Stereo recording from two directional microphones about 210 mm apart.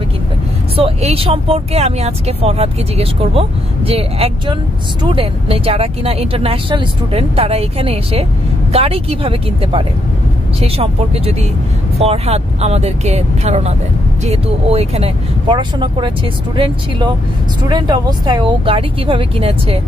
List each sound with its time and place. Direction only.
0.7 s speech: 25° right (ahead or behind)